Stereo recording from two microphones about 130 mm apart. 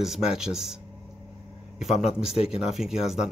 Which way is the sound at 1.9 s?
55° left (ahead or behind).